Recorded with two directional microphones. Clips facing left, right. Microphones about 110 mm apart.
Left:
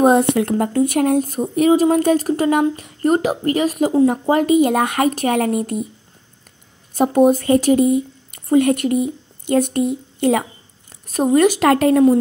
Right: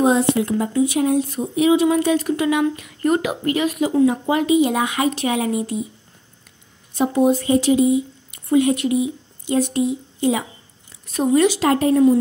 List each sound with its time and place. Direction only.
0.0 s speech: 55° left (ahead or behind)
6.9 s speech: 50° left (ahead or behind)
11.7 s speech: 70° left (ahead or behind)